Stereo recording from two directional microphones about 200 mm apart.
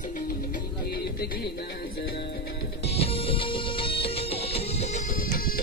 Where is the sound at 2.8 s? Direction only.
30° left (ahead or behind).